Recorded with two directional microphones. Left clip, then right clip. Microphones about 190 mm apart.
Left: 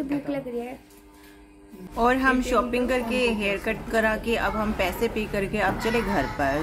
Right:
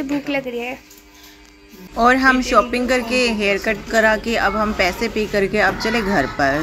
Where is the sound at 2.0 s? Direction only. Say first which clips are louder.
Right 8 dB; 15° right (ahead or behind).